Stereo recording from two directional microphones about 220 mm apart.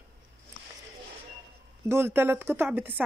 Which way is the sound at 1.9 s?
10° right (ahead or behind).